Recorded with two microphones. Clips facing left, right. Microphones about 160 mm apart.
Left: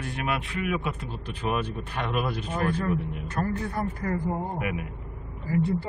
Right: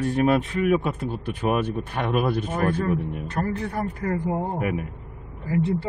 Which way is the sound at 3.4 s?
25° right (ahead or behind).